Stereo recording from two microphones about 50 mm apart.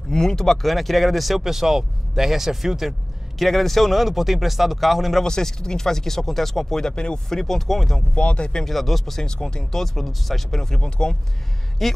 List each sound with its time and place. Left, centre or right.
0.1 s speech: centre
3.3 s speech: centre
5.2 s speech: centre
8.1 s speech: left
8.6 s speech: centre
11.8 s speech: centre